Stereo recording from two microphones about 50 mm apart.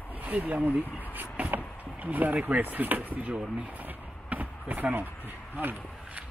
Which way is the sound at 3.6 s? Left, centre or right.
Right.